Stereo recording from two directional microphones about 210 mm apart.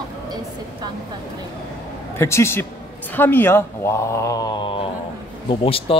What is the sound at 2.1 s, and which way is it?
Speech, 10° left (ahead or behind).